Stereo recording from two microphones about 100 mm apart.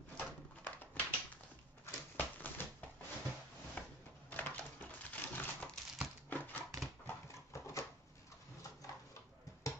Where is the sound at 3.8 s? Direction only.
15° left (ahead or behind).